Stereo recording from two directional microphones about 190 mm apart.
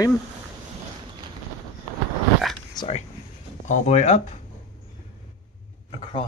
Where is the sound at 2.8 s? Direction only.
20° left (ahead or behind).